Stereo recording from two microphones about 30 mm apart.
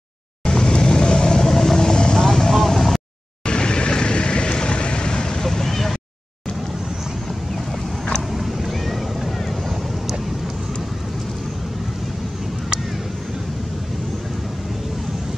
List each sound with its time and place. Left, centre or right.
0.5 s vehicle: left
1.4 s vehicle: centre
3.4 s vehicle: left
5.4 s vehicle: centre
8.4 s boat: centre